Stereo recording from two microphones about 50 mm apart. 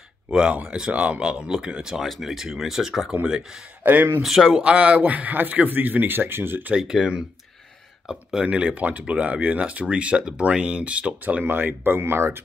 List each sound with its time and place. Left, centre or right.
0.3 s speech: centre
3.1 s speech: right
3.8 s a man's voice: right
4.2 s speech: centre
4.5 s a man's voice: right
6.7 s speech: centre
11.4 s speech: right